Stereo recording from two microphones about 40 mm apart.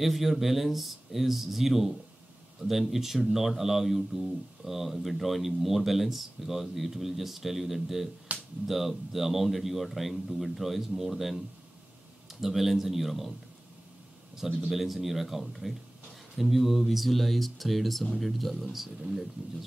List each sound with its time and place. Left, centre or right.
0.0 s speech: centre
8.3 s a sound: right
8.6 s speech: centre
12.4 s speech: centre
14.7 s speech: centre